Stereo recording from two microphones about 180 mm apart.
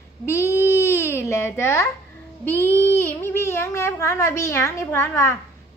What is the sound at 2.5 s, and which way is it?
Child singing, 15° right (ahead or behind).